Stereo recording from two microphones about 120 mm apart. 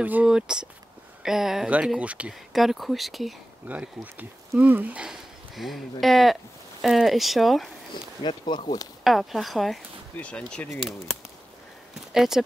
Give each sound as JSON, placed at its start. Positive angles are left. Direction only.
{"t": 0.0, "sound": "speech", "side_deg": -10}
{"t": 3.6, "sound": "speech", "side_deg": -15}
{"t": 7.9, "sound": "speech", "side_deg": 40}
{"t": 9.0, "sound": "speech", "side_deg": 0}
{"t": 12.1, "sound": "speech", "side_deg": -5}